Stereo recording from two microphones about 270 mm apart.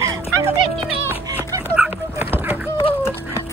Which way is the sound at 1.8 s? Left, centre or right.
Centre.